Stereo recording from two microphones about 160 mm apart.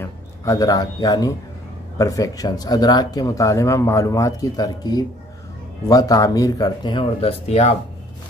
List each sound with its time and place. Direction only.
0.0 s a man's voice: 20° left (ahead or behind); by 7.7 s 40° left (ahead or behind)